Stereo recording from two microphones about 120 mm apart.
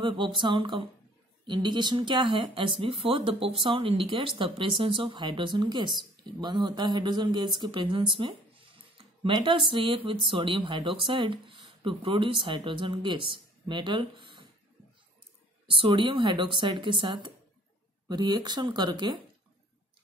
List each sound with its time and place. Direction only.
0.0 s speech: 45° right (ahead or behind)
15.7 s speech: 45° right (ahead or behind)